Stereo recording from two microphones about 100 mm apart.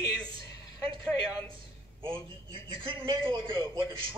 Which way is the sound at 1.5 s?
60° right (ahead or behind).